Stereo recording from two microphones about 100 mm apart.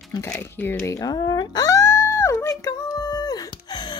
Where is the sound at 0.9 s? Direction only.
40° left (ahead or behind).